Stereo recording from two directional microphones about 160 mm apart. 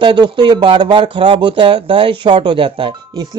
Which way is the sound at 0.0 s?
30° right (ahead or behind).